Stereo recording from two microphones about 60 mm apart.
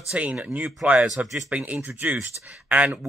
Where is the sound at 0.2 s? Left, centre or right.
Right.